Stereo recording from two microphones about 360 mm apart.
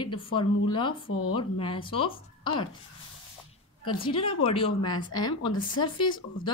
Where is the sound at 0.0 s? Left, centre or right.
Centre.